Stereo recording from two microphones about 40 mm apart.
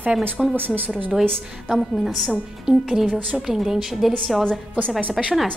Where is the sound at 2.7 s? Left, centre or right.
Centre.